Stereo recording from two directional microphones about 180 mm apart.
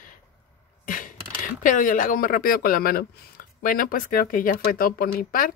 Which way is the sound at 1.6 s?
45° left (ahead or behind).